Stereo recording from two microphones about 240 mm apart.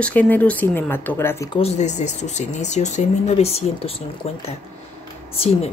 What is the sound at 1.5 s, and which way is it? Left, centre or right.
Speech, left.